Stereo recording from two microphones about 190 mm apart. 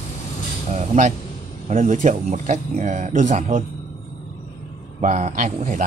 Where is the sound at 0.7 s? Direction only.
40° right (ahead or behind).